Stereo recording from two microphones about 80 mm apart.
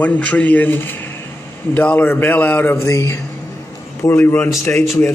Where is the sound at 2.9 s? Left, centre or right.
Left.